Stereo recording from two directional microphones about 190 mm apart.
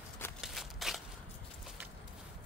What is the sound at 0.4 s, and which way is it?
Shuffling cards, centre (ahead or behind).